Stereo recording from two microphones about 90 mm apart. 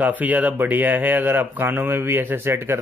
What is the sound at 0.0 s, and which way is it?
Speech, 20° right (ahead or behind).